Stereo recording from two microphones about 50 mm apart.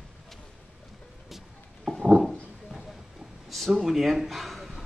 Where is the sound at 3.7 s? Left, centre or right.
Centre.